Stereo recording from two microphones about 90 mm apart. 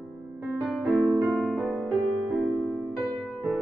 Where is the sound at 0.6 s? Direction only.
Centre (ahead or behind).